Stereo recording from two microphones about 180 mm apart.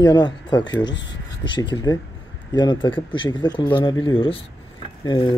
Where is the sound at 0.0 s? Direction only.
25° left (ahead or behind).